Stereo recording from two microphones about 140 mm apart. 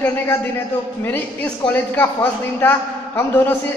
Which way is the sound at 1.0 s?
15° left (ahead or behind).